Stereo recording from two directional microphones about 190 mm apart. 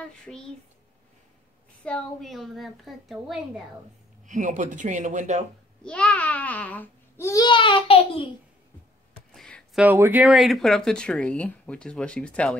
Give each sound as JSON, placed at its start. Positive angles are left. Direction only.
{"t": 0.0, "sound": "speech", "side_deg": 5}
{"t": 1.9, "sound": "speech", "side_deg": 5}
{"t": 4.3, "sound": "speech", "side_deg": -40}
{"t": 5.9, "sound": "a child's voice", "side_deg": 5}
{"t": 9.3, "sound": "a sound", "side_deg": 5}
{"t": 9.8, "sound": "speech", "side_deg": -10}